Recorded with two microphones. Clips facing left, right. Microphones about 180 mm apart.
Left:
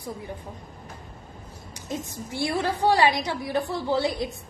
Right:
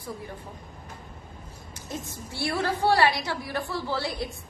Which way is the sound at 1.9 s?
15° left (ahead or behind).